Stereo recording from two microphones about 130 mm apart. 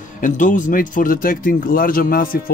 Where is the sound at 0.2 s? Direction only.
80° left.